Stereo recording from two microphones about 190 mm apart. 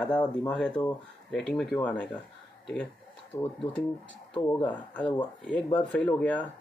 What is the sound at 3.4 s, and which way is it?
Speech, 30° left (ahead or behind).